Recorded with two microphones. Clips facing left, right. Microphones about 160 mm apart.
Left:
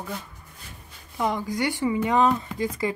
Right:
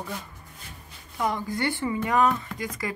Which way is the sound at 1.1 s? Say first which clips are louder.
Left 2 dB; 15° left (ahead or behind).